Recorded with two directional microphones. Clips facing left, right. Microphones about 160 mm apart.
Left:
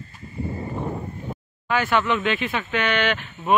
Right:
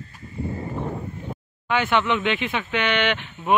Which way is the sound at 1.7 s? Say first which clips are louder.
Even; 20° right (ahead or behind).